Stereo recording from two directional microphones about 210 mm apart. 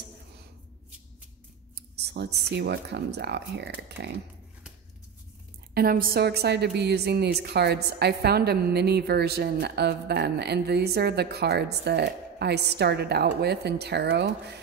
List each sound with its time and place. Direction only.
1.8 s a woman's voice: 50° right (ahead or behind)
5.8 s a woman's voice: 45° right (ahead or behind)